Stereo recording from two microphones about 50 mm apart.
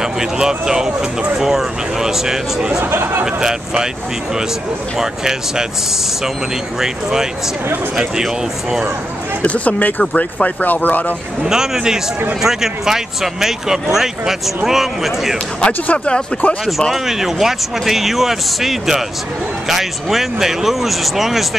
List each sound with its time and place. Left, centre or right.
0.0 s speech: centre
2.8 s speech: right
3.3 s speech: centre
4.9 s speech: centre
6.8 s speech: centre
9.4 s speech: left
11.4 s speech: centre
15.6 s speech: left
16.9 s speech: centre